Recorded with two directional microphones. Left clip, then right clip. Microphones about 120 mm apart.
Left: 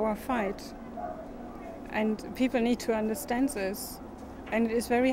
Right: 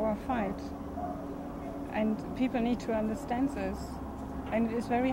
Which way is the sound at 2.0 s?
25° left (ahead or behind).